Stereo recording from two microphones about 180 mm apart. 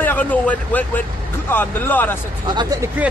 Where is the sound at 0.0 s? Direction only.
10° left (ahead or behind).